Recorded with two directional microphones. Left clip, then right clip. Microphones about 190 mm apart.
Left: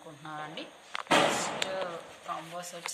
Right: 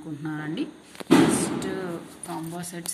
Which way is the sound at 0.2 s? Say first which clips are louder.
Right 5 dB; 10° right (ahead or behind).